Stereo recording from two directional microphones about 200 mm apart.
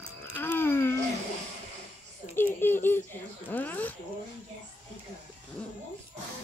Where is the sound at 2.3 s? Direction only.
10° left (ahead or behind).